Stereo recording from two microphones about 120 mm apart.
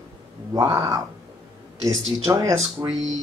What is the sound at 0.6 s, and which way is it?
Speech, 25° right (ahead or behind).